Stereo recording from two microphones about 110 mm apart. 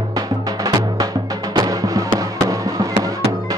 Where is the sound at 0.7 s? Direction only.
35° right (ahead or behind).